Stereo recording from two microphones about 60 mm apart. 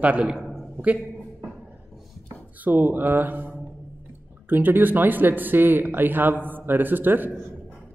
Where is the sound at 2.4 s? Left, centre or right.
Right.